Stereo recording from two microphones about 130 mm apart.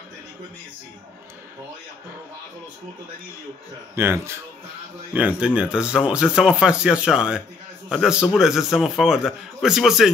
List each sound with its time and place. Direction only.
3.9 s a man's voice: 20° right (ahead or behind)